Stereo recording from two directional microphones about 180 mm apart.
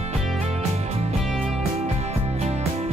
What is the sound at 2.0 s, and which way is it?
Music, 35° right (ahead or behind).